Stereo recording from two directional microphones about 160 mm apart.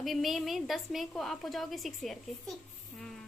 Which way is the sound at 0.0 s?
Centre (ahead or behind).